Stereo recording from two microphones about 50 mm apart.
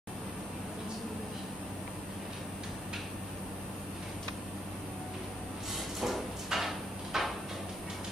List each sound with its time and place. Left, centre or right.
5.9 s sliding door: centre